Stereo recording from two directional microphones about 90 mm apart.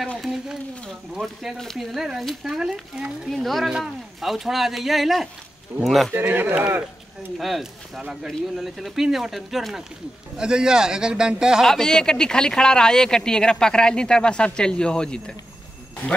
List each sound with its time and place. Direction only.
1.1 s speech: centre (ahead or behind)
6.1 s speech: 25° right (ahead or behind)
7.3 s a man's voice: centre (ahead or behind)
11.6 s speech: 5° left (ahead or behind)